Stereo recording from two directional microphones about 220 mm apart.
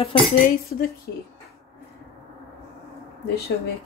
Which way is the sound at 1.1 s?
45° left (ahead or behind).